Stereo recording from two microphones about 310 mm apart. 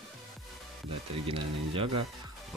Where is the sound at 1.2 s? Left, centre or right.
Centre.